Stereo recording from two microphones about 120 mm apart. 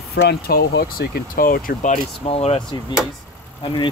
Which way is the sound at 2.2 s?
55° left (ahead or behind).